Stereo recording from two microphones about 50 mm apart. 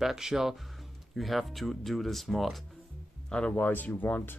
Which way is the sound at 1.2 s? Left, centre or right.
Centre.